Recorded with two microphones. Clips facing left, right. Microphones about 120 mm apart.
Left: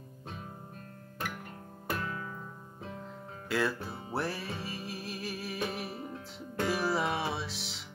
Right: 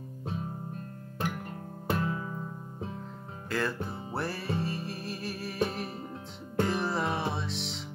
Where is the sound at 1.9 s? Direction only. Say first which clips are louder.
Right 5 dB; 25° right (ahead or behind).